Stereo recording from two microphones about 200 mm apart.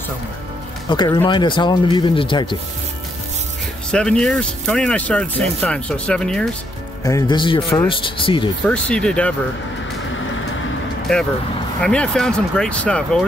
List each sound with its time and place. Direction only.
0.8 s speech: 20° left (ahead or behind)
3.9 s speech: 5° left (ahead or behind)
7.1 s speech: 20° left (ahead or behind)
8.6 s speech: 5° left (ahead or behind)
11.1 s speech: 5° left (ahead or behind)